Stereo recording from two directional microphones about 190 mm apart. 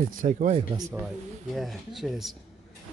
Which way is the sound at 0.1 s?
45° right (ahead or behind).